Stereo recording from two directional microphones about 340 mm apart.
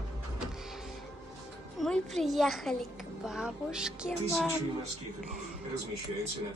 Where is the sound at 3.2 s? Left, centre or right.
Centre.